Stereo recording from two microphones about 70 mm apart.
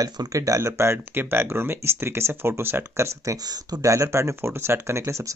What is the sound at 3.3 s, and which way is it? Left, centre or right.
Speech, right.